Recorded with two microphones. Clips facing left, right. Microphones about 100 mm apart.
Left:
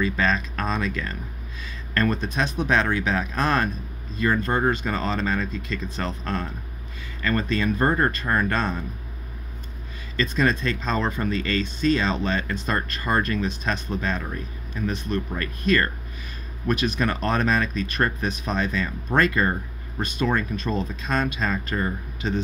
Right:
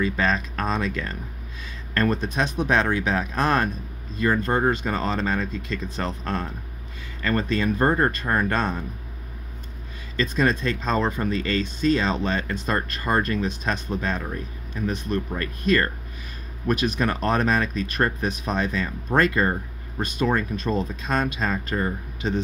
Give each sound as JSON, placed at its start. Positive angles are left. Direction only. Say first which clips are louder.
{"t": 0.0, "sound": "speech", "louder": "even", "side_deg": -30}
{"t": 0.3, "sound": "speech", "louder": "even", "side_deg": -20}
{"t": 2.0, "sound": "speech", "louder": "right 1 dB", "side_deg": -15}
{"t": 7.2, "sound": "speech", "louder": "right 1 dB", "side_deg": -30}
{"t": 10.4, "sound": "speech", "louder": "right 1 dB", "side_deg": -20}
{"t": 20.0, "sound": "speech", "louder": "right 1 dB", "side_deg": -15}